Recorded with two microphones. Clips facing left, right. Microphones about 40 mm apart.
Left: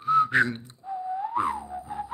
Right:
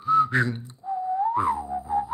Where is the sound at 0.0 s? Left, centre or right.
Left.